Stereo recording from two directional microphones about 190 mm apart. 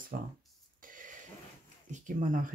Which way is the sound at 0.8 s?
45° right (ahead or behind).